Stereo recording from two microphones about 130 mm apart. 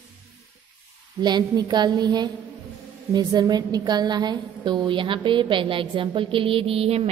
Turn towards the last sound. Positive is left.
turn(degrees=-50)  # may be behind; listen again after turning